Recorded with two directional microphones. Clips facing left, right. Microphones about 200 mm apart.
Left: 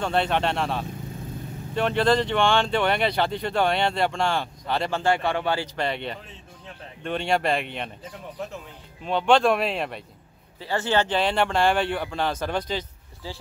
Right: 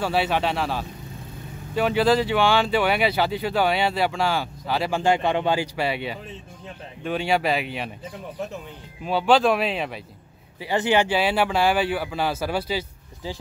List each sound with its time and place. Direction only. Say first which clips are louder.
0.0 s speech: right 1 dB; 5° right (ahead or behind)
5.0 s speech: right 4 dB; 20° right (ahead or behind)
9.0 s speech: right 1 dB; 5° right (ahead or behind)
10.6 s speech: right 3 dB; 15° right (ahead or behind)